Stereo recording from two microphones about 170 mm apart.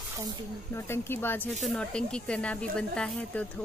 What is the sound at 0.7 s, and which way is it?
A woman's voice, 15° left (ahead or behind).